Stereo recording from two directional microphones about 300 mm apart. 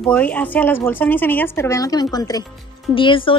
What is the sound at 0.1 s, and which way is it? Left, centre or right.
Speech, centre.